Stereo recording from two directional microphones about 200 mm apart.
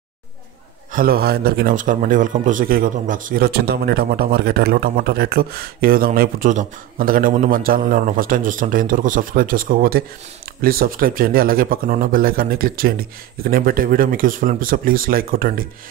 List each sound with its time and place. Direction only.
0.9 s a man's voice: 50° right (ahead or behind)